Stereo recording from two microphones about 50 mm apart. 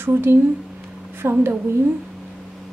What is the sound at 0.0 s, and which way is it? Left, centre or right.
A woman's voice, right.